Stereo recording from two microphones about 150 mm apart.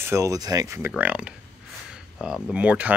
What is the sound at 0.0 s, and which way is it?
Speech, 20° right (ahead or behind).